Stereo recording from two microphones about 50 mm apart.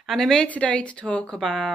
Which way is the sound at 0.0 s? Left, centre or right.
Centre.